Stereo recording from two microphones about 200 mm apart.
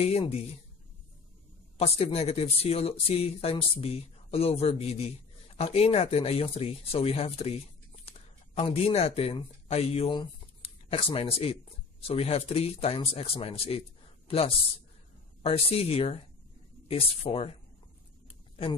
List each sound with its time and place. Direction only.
0.0 s speech: 30° left (ahead or behind)
2.0 s speech: 30° left (ahead or behind)